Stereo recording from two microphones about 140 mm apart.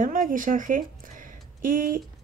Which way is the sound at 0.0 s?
75° right (ahead or behind).